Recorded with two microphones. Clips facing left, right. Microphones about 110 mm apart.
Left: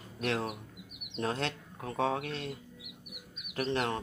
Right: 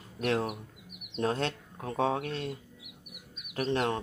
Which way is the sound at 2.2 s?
40° right (ahead or behind).